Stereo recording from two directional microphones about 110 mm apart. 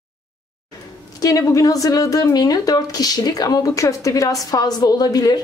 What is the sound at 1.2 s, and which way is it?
Speech, 30° left (ahead or behind).